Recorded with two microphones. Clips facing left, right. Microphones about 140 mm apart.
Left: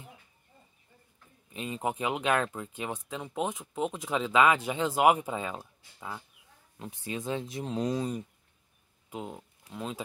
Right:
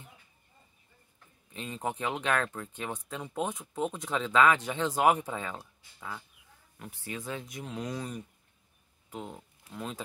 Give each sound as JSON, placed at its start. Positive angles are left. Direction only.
{"t": 1.5, "sound": "speech", "side_deg": 10}
{"t": 9.1, "sound": "speech", "side_deg": 15}